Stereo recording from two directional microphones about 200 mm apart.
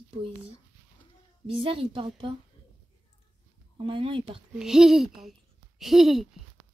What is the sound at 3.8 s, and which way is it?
Speech, 25° right (ahead or behind).